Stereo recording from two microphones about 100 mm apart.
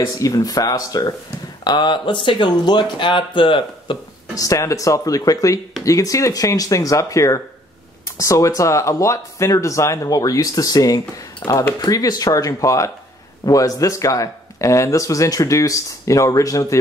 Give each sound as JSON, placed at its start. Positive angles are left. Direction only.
{"t": 0.2, "sound": "speech", "side_deg": 35}
{"t": 1.6, "sound": "speech", "side_deg": 45}
{"t": 4.4, "sound": "speech", "side_deg": 35}